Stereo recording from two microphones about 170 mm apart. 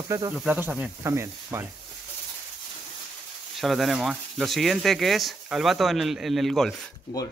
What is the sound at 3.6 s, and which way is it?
Speech, centre (ahead or behind).